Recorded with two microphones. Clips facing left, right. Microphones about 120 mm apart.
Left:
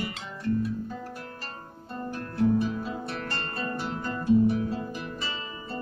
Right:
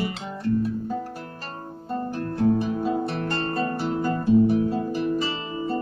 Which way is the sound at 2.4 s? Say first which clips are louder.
Right 3 dB; 40° right (ahead or behind).